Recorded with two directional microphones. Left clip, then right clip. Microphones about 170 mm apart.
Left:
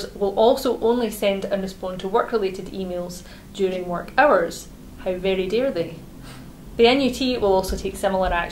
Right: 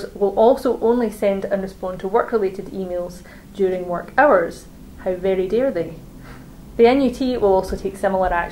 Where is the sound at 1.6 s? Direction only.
35° left (ahead or behind).